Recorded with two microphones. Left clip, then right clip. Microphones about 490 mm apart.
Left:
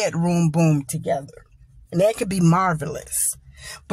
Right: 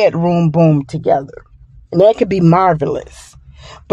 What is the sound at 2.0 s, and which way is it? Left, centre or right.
A woman's voice, left.